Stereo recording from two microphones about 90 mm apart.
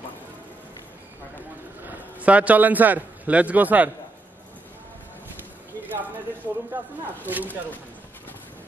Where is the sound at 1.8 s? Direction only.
15° right (ahead or behind).